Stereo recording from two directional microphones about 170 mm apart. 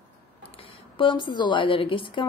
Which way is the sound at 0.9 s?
30° left (ahead or behind).